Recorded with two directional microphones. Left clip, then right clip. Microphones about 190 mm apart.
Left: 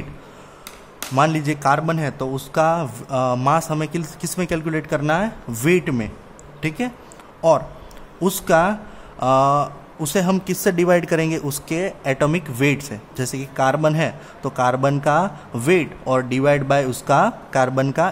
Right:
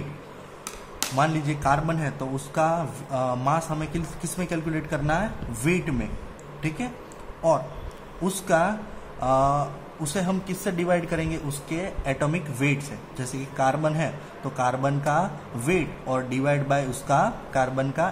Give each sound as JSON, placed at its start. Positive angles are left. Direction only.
{"t": 0.9, "sound": "speech", "side_deg": 55}
{"t": 8.2, "sound": "speech", "side_deg": 50}